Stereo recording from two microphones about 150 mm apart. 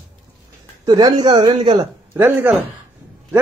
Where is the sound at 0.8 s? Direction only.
25° right (ahead or behind).